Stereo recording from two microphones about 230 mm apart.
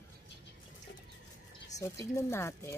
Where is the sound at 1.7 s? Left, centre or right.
Centre.